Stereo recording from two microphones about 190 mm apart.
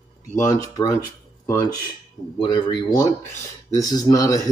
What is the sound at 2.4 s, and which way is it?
Speech, 20° left (ahead or behind).